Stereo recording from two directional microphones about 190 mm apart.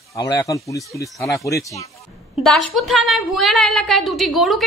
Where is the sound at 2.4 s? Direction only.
Centre (ahead or behind).